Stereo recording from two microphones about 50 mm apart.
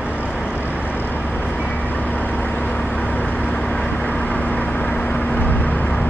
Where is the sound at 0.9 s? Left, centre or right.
Left.